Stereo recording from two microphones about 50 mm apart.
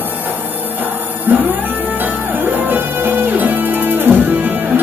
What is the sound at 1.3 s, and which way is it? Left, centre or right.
Music, right.